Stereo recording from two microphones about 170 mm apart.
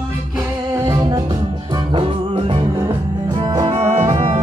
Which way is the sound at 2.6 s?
25° right (ahead or behind).